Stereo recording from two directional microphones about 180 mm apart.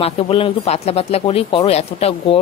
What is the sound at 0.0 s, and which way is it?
Speech, 30° left (ahead or behind).